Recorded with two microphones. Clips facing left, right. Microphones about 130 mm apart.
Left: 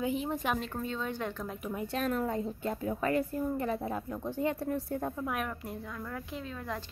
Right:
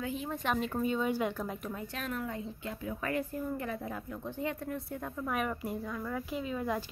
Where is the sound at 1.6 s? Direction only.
15° left (ahead or behind).